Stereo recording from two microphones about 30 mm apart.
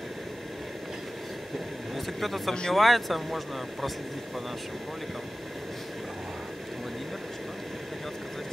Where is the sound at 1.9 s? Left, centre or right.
Centre.